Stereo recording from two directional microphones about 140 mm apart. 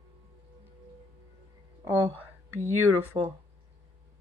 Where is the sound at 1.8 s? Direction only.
15° right (ahead or behind).